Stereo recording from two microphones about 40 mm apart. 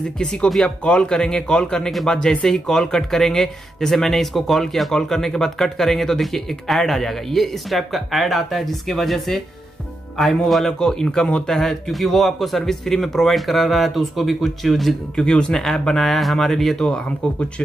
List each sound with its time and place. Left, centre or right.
0.7 s a man's voice: left; by 10.7 s centre
10.8 s a man's voice: centre
15.1 s a man's voice: centre
15.9 s a man's voice: centre
16.8 s a man's voice: left